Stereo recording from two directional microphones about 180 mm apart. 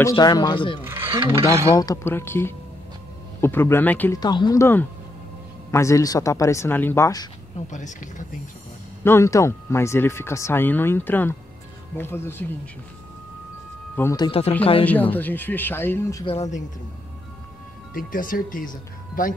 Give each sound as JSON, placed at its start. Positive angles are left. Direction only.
{"t": 0.0, "sound": "speech", "side_deg": 25}
{"t": 0.8, "sound": "speech", "side_deg": -10}
{"t": 1.7, "sound": "speech", "side_deg": 20}
{"t": 4.2, "sound": "speech", "side_deg": 25}
{"t": 7.7, "sound": "speech", "side_deg": 45}
{"t": 9.0, "sound": "speech", "side_deg": 15}
{"t": 14.1, "sound": "speech", "side_deg": 25}
{"t": 14.9, "sound": "speech", "side_deg": 10}
{"t": 16.3, "sound": "speech", "side_deg": 40}
{"t": 17.9, "sound": "speech", "side_deg": 50}